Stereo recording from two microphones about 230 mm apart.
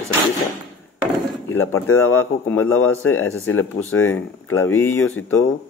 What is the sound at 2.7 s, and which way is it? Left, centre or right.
Speech, centre.